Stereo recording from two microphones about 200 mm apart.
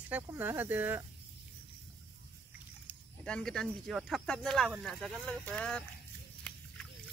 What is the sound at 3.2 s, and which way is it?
Speech, 5° left (ahead or behind).